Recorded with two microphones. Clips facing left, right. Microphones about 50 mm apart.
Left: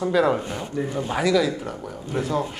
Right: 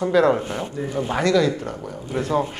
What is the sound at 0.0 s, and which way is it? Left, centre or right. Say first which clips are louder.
Speech: right 3 dB; centre.